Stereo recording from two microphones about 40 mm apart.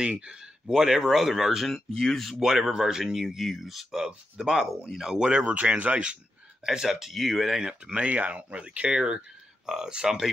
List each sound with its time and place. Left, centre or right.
0.1 s speech: right; by 2.3 s centre
2.4 s speech: centre
3.9 s speech: centre
5.1 s speech: right
5.5 s speech: right
6.6 s speech: centre
7.1 s speech: centre
7.4 s speech: centre